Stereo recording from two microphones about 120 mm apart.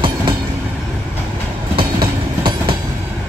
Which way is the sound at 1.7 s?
45° right (ahead or behind).